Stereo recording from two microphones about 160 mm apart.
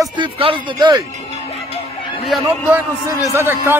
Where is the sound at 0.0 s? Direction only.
30° right (ahead or behind).